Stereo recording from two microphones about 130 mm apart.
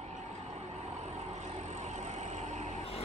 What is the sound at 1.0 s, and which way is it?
Vehicle, 60° right (ahead or behind).